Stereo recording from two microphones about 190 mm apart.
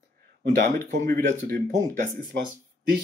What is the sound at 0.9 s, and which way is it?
Speech, 45° right (ahead or behind).